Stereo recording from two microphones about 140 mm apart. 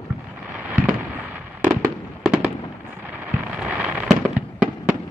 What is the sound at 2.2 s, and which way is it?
Fireworks, 10° right (ahead or behind).